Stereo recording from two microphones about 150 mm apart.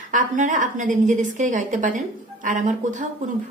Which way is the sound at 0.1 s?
60° right (ahead or behind).